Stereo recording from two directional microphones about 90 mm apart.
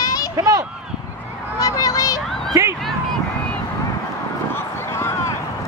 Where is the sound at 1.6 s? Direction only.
45° left (ahead or behind).